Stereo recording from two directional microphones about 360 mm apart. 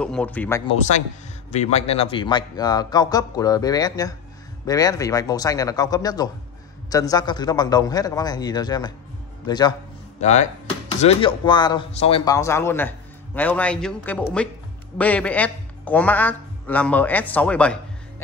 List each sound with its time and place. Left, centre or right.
0.0 s a man's voice: centre